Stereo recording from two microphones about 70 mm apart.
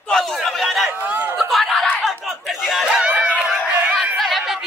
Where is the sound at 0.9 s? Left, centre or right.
Right.